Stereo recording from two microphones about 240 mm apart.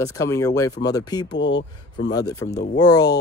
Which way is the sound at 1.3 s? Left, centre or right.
Left.